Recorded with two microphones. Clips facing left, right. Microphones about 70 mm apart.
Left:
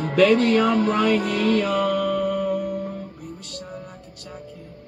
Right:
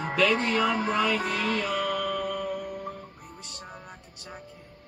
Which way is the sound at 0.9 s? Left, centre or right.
Left.